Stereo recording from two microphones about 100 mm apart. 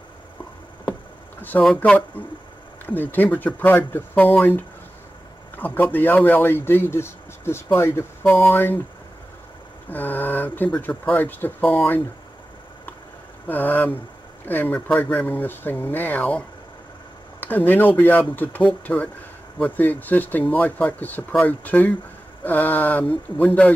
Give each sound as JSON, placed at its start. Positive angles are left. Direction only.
{"t": 1.8, "sound": "speech", "side_deg": 15}
{"t": 9.8, "sound": "speech", "side_deg": 20}
{"t": 13.5, "sound": "speech", "side_deg": 20}